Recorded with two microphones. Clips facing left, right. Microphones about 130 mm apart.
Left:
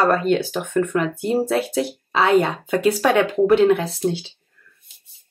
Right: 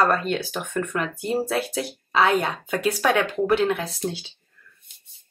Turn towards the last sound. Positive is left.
turn(degrees=10)  # may be behind; listen again after turning